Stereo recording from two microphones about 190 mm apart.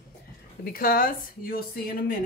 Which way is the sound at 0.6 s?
50° left (ahead or behind).